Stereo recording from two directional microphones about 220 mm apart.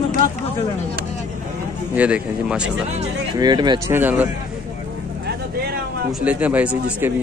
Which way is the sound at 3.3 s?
20° right (ahead or behind).